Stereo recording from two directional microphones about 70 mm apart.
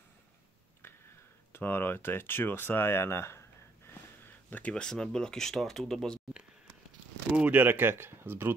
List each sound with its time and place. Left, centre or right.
1.5 s speech: left; by 6.2 s centre
7.3 s speech: right